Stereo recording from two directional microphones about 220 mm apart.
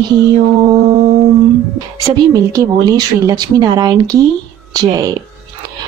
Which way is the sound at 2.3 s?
15° right (ahead or behind).